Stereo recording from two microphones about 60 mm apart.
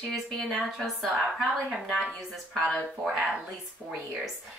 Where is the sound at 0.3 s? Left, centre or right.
Centre.